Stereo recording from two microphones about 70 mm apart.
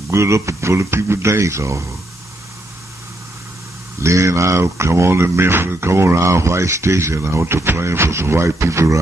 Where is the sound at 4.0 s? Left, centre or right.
Right.